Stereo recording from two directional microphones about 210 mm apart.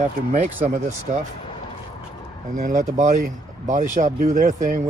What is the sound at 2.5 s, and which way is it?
Speech, 35° right (ahead or behind).